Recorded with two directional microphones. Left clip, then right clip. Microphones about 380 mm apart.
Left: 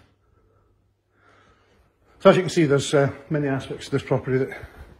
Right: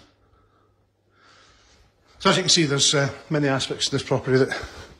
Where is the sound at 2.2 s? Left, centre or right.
Centre.